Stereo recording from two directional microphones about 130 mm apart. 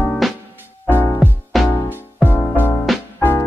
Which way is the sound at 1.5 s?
Centre (ahead or behind).